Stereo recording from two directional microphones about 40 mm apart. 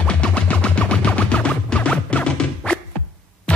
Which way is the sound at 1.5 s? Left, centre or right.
Left.